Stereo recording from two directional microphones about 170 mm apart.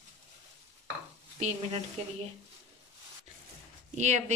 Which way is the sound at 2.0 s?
40° right (ahead or behind).